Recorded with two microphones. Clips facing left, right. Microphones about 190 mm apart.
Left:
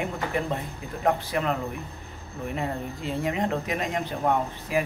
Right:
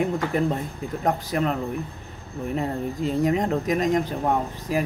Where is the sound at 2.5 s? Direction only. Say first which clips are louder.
Right 4 dB; 40° right (ahead or behind).